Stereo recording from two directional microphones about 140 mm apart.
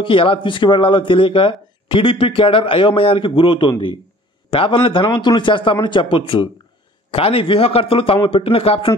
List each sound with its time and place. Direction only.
0.0 s speech: 40° left (ahead or behind)